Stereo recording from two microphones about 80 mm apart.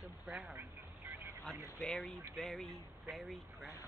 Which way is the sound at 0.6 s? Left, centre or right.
Right.